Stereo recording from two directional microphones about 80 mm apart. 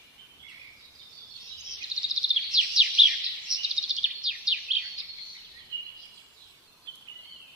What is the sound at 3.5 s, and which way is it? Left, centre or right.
Bird vocalization, centre.